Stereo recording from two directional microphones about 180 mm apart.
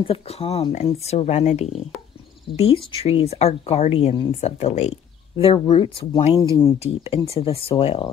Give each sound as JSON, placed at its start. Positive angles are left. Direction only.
{"t": 0.0, "sound": "speech", "side_deg": 30}